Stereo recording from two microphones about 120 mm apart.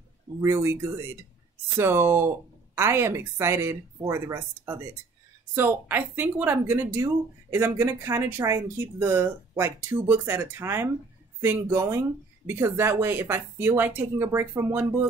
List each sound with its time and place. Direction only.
0.4 s speech: 25° right (ahead or behind)